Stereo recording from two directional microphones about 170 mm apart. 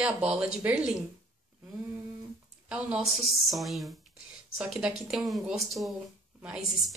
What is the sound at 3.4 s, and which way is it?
Speech, centre (ahead or behind).